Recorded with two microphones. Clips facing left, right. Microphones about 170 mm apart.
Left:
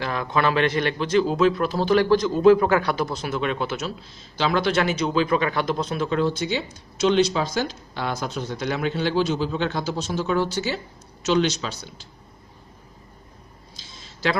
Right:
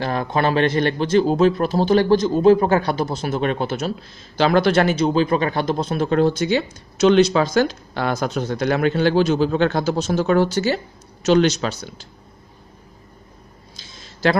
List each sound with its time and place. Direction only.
0.0 s a man's voice: 40° right (ahead or behind)
1.7 s speech: 30° right (ahead or behind)
3.2 s a man's voice: 45° right (ahead or behind); by 5.9 s 30° right (ahead or behind)
5.9 s speech: 50° right (ahead or behind)
11.6 s speech: 60° right (ahead or behind)